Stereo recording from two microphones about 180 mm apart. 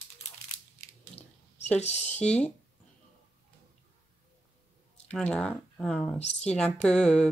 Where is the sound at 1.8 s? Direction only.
35° left (ahead or behind).